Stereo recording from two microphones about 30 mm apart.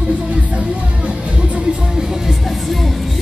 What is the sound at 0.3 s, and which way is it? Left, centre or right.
Music, right.